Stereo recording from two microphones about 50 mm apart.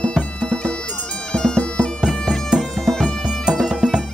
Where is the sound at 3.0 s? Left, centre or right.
Centre.